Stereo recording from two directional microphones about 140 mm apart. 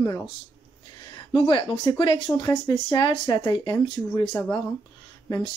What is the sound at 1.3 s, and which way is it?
Speech, 35° left (ahead or behind).